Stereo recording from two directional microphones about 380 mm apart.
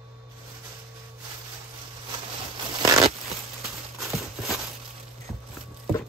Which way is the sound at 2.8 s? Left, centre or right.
Centre.